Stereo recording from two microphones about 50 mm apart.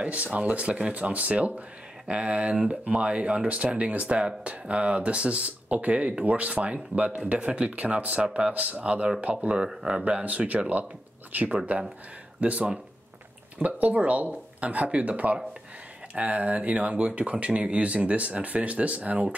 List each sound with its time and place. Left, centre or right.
0.0 s speech: right